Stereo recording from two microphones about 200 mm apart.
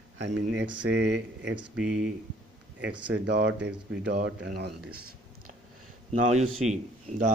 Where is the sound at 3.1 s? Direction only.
60° right (ahead or behind).